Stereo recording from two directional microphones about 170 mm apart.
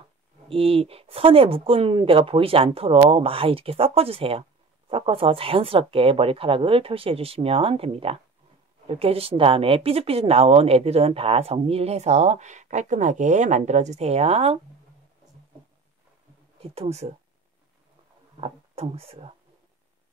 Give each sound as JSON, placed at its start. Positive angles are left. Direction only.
{"t": 0.5, "sound": "speech", "side_deg": -35}
{"t": 16.6, "sound": "speech", "side_deg": -35}
{"t": 18.4, "sound": "speech", "side_deg": -35}